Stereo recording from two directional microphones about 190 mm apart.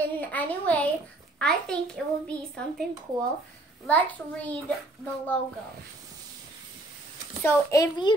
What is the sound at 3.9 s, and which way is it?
Speech, 10° left (ahead or behind).